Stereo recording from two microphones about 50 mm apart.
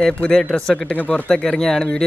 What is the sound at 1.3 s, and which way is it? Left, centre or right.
Speech, centre.